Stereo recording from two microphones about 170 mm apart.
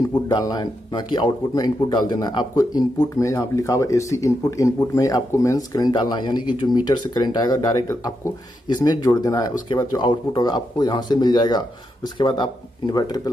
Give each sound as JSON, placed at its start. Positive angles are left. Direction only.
{"t": 0.1, "sound": "speech", "side_deg": 25}